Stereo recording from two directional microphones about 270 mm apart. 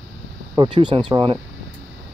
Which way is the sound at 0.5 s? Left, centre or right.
Centre.